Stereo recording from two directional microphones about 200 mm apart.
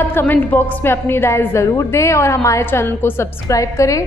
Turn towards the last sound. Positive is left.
turn(degrees=15)  # may be behind; listen again after turning